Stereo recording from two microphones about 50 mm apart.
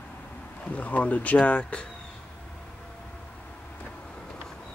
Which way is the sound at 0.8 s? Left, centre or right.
Left.